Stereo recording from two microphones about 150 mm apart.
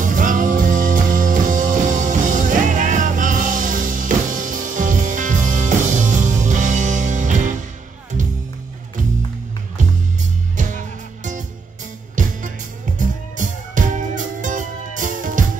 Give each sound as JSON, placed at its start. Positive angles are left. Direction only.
{"t": 0.0, "sound": "music", "side_deg": -60}
{"t": 10.5, "sound": "music", "side_deg": -55}